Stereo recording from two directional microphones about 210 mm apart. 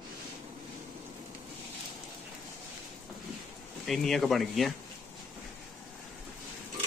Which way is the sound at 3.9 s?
Centre (ahead or behind).